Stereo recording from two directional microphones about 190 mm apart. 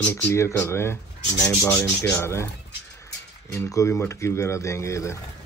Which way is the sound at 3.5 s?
15° left (ahead or behind).